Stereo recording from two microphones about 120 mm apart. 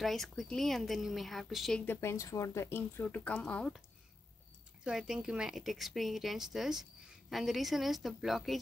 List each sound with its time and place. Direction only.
0.0 s speech: centre (ahead or behind)
1.9 s speech: 20° left (ahead or behind)
4.8 s speech: 5° right (ahead or behind)